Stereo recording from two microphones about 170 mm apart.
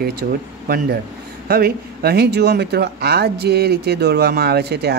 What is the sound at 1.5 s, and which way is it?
Speech, 65° right (ahead or behind).